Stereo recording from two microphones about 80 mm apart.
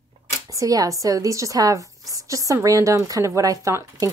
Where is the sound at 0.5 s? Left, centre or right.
Right.